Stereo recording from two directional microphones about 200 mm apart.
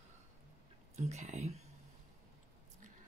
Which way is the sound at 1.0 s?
35° right (ahead or behind).